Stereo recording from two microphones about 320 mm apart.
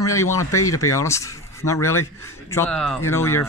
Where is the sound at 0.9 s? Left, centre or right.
Centre.